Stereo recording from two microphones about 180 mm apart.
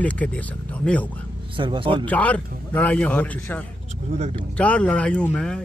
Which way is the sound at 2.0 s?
10° left (ahead or behind).